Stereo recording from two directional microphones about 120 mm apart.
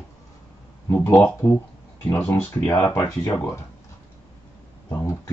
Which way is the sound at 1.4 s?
25° left (ahead or behind).